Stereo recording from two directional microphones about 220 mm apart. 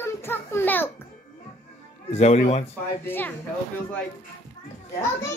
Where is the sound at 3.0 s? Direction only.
10° left (ahead or behind).